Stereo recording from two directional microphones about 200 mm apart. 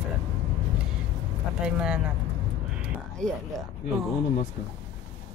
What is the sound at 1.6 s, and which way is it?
Speech, 5° right (ahead or behind).